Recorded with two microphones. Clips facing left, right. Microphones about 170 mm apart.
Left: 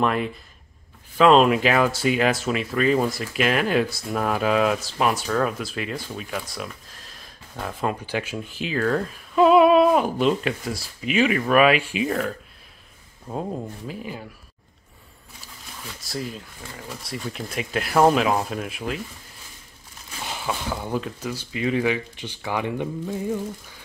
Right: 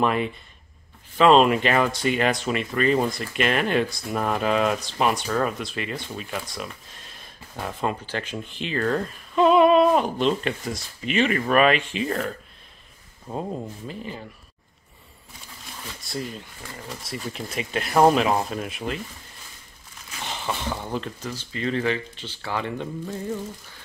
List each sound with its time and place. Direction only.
0.0 s speech: centre (ahead or behind)
13.3 s speech: centre (ahead or behind)
16.0 s speech: centre (ahead or behind)
20.2 s speech: 5° left (ahead or behind)